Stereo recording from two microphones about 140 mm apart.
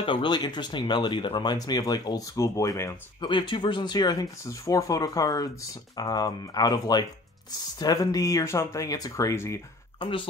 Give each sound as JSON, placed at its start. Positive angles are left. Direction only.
{"t": 0.0, "sound": "speech", "side_deg": 35}
{"t": 3.2, "sound": "speech", "side_deg": 35}
{"t": 9.9, "sound": "speech", "side_deg": 35}